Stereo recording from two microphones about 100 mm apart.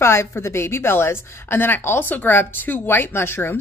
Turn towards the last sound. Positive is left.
turn(degrees=25)  # may be behind; listen again after turning